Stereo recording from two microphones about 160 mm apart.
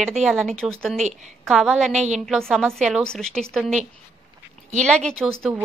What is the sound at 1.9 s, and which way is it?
Speech, 45° right (ahead or behind).